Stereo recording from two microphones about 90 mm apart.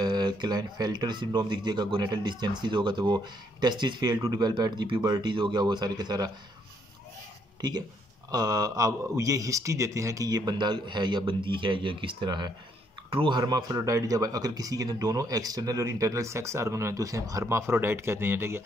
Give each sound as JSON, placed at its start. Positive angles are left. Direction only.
{"t": 0.0, "sound": "a man's voice", "side_deg": -55}
{"t": 8.3, "sound": "a man's voice", "side_deg": -45}
{"t": 13.1, "sound": "speech", "side_deg": -70}
{"t": 13.4, "sound": "speech", "side_deg": -45}